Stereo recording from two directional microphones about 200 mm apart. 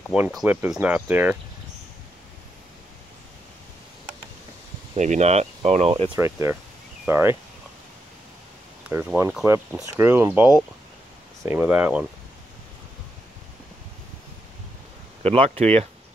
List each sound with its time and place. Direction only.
0.1 s speech: 5° right (ahead or behind)
4.9 s speech: 35° right (ahead or behind)
6.1 s speech: 15° right (ahead or behind)
8.8 s speech: 10° right (ahead or behind)
15.2 s speech: 30° right (ahead or behind)